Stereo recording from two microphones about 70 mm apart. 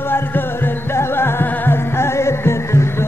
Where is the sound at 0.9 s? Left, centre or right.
Left.